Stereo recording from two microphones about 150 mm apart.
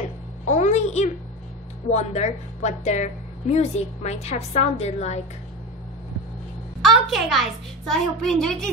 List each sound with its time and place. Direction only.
0.5 s a sound: 50° left (ahead or behind)
1.9 s a woman's voice: 50° left (ahead or behind)
6.8 s a child's voice: centre (ahead or behind)